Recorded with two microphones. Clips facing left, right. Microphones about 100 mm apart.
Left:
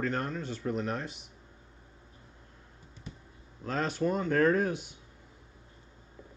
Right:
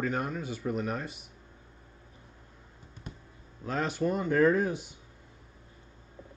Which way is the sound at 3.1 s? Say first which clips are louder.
Right 1 dB; 55° right (ahead or behind).